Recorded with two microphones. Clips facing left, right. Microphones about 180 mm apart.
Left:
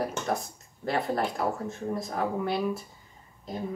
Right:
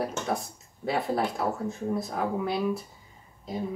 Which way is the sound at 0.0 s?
Centre (ahead or behind).